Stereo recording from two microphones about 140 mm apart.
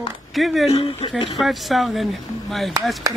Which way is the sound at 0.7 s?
40° left (ahead or behind).